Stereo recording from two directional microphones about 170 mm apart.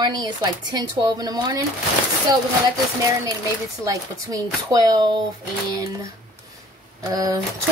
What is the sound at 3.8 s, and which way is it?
Speech, 20° right (ahead or behind).